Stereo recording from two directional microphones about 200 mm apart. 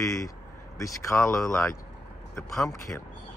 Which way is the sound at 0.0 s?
15° left (ahead or behind).